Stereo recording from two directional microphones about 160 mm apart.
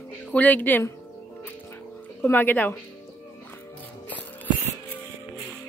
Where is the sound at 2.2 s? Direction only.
10° left (ahead or behind).